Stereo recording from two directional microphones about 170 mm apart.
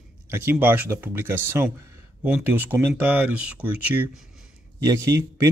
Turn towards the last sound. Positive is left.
turn(degrees=-20)  # may be behind; listen again after turning